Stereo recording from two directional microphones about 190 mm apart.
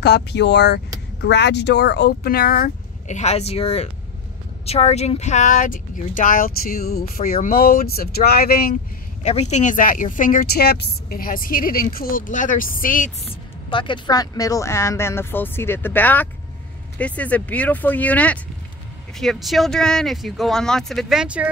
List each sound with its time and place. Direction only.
0.0 s speech: 60° left (ahead or behind)
9.2 s speech: 35° left (ahead or behind)
13.3 s speech: 25° left (ahead or behind); by 21.5 s 5° right (ahead or behind)